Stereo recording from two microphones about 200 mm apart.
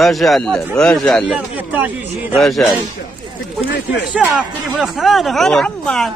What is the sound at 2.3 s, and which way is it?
Speech, centre (ahead or behind).